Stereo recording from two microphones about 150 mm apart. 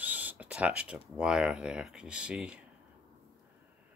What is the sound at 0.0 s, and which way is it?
Speech, 10° right (ahead or behind).